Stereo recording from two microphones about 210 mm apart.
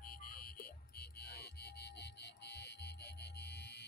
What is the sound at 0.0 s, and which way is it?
Music, 45° left (ahead or behind).